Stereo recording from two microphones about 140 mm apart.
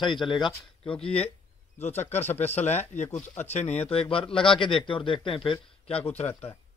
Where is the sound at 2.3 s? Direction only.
50° left (ahead or behind).